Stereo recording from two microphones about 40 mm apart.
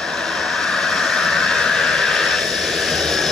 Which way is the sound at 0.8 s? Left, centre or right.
Centre.